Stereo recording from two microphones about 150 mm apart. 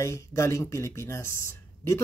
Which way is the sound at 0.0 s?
20° left (ahead or behind).